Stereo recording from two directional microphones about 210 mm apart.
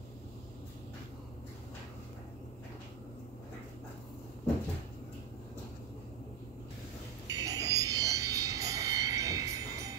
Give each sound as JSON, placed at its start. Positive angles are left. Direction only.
{"t": 7.2, "sound": "music", "side_deg": -15}